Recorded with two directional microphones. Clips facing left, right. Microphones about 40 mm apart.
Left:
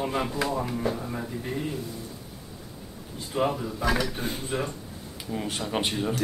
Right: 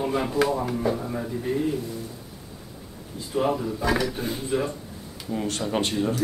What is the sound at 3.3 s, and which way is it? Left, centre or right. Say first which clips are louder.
Speech: right 1 dB; left.